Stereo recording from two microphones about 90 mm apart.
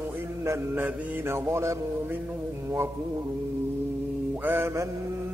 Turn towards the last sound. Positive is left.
turn(degrees=-25)  # may be behind; listen again after turning